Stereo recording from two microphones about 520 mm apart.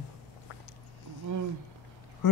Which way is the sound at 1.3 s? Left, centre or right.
Right.